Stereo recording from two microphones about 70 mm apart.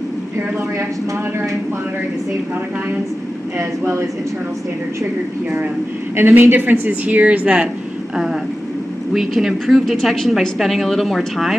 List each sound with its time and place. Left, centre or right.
3.5 s speech: right
6.1 s a woman's voice: right
9.1 s a woman's voice: centre